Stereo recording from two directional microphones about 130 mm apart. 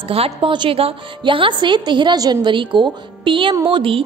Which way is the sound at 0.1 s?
45° right (ahead or behind).